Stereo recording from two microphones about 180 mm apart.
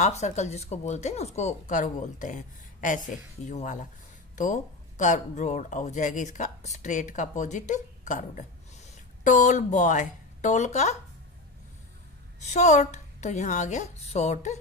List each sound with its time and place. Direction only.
0.0 s speech: 40° left (ahead or behind)
12.4 s speech: 40° left (ahead or behind)